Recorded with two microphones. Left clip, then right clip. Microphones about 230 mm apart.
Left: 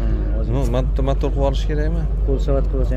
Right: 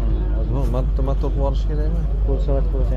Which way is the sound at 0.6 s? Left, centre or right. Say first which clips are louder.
Left 4 dB; left.